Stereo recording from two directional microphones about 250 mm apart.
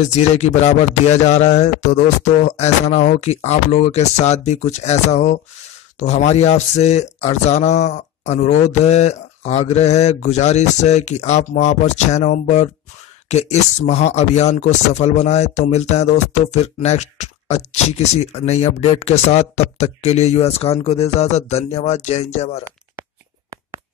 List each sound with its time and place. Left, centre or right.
0.0 s speech: left